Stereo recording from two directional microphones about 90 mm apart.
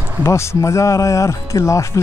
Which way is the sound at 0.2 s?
30° left (ahead or behind).